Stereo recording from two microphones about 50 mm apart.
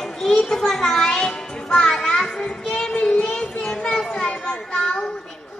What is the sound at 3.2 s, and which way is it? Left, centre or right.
Children playing, centre.